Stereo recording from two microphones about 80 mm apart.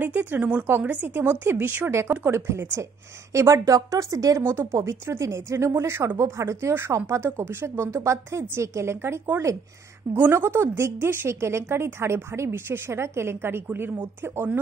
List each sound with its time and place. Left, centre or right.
0.0 s a woman's voice: right
4.4 s a woman's voice: right
4.7 s a woman's voice: right